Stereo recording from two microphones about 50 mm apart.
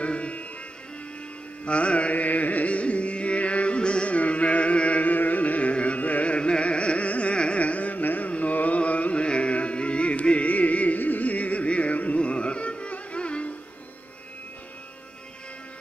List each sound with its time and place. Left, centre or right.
0.0 s music: left
1.7 s carnatic music: left